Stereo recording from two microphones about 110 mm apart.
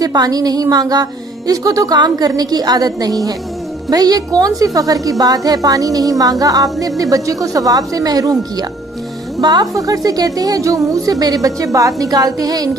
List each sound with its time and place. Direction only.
0.0 s a woman's voice: 35° right (ahead or behind)